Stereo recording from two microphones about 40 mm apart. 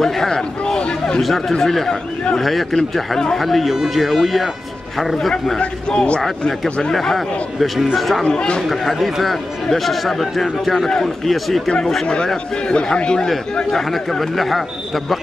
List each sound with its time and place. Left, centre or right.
0.0 s speech: centre
0.7 s a sound: left
1.5 s speech: centre
2.3 s speech: centre
5.6 s a man's voice: left
6.9 s speech: centre
8.2 s a man's voice: left
8.6 s speech: centre
12.6 s a man's voice: left
13.7 s speech: centre